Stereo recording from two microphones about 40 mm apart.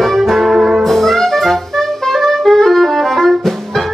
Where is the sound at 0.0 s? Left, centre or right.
Centre.